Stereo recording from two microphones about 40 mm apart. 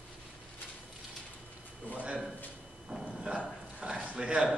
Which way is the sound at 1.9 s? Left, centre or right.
Right.